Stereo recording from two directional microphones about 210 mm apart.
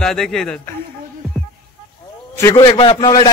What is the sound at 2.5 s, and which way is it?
Speech, 25° left (ahead or behind).